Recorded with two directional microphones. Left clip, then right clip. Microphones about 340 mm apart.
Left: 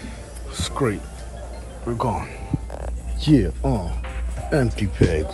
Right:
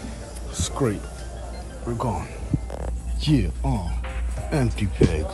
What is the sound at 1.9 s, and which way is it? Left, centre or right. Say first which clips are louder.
Speech: left 4 dB; centre.